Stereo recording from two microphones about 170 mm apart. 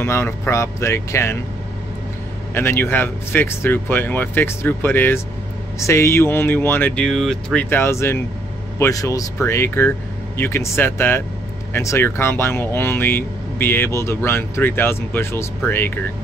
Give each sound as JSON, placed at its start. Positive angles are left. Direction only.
{"t": 0.0, "sound": "speech", "side_deg": 15}
{"t": 2.5, "sound": "speech", "side_deg": 15}